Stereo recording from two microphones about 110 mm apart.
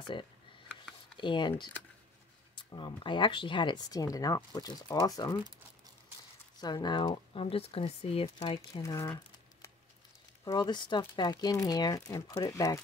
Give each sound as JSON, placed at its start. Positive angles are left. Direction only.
{"t": 0.0, "sound": "speech", "side_deg": 45}
{"t": 2.5, "sound": "speech", "side_deg": 45}
{"t": 6.6, "sound": "speech", "side_deg": 40}
{"t": 8.4, "sound": "speech", "side_deg": 50}
{"t": 8.8, "sound": "speech", "side_deg": 30}
{"t": 10.4, "sound": "speech", "side_deg": 40}